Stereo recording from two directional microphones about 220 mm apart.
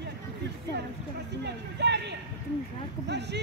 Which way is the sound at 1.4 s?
50° right (ahead or behind).